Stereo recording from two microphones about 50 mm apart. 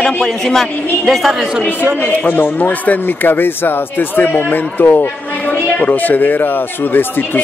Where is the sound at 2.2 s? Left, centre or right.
Left.